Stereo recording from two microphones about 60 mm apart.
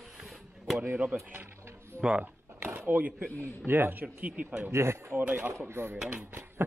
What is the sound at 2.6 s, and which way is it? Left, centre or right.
Speech, right.